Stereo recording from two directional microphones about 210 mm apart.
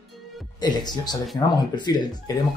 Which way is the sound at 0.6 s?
20° left (ahead or behind).